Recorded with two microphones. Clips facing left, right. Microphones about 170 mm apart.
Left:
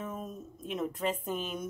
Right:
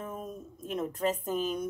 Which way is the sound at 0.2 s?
Centre (ahead or behind).